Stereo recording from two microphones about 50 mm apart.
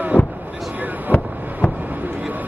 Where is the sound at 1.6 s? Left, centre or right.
Left.